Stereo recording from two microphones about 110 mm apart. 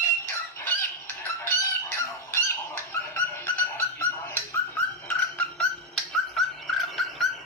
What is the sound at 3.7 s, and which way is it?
Dog, 20° left (ahead or behind).